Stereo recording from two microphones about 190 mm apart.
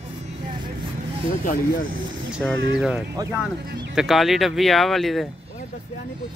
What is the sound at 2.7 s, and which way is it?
Speech, 5° right (ahead or behind).